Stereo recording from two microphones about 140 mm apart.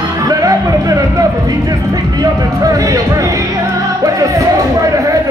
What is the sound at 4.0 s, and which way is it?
Music, 25° right (ahead or behind).